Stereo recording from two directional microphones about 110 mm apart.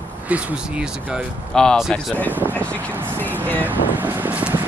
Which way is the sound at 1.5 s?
5° left (ahead or behind).